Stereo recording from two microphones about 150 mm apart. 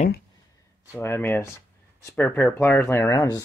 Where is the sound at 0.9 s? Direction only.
15° left (ahead or behind).